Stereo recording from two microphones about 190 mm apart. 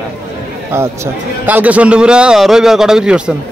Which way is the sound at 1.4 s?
10° right (ahead or behind).